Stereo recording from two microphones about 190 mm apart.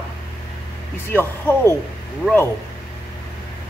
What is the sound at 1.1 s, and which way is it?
Speech, 10° left (ahead or behind).